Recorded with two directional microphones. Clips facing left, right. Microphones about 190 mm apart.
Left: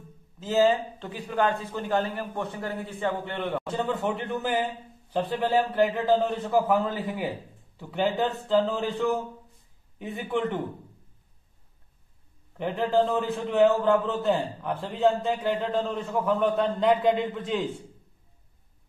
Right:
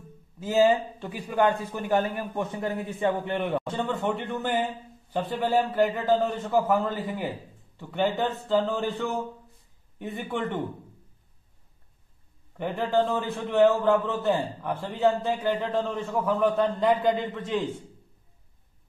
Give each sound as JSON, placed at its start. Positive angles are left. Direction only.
{"t": 0.4, "sound": "a man's voice", "side_deg": -15}
{"t": 3.7, "sound": "a man's voice", "side_deg": 0}
{"t": 12.5, "sound": "a man's voice", "side_deg": 0}